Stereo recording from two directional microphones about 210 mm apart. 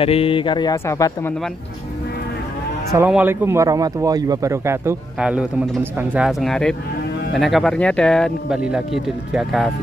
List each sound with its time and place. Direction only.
0.0 s speech: 25° left (ahead or behind)
2.9 s speech: 10° right (ahead or behind)